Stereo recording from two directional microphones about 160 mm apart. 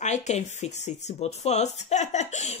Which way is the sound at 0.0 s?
45° left (ahead or behind).